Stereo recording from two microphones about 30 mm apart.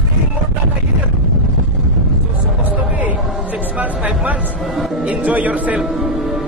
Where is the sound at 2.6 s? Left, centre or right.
Right.